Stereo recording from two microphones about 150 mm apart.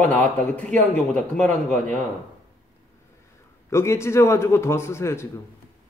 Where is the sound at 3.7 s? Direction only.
20° left (ahead or behind).